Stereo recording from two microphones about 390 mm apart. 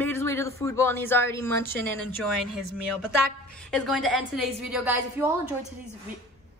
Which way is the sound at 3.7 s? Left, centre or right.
Centre.